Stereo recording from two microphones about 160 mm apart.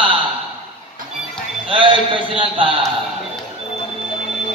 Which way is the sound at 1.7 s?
30° right (ahead or behind).